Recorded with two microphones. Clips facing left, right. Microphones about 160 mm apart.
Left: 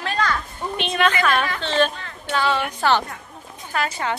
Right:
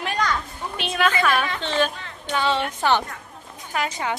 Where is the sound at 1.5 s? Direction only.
15° right (ahead or behind).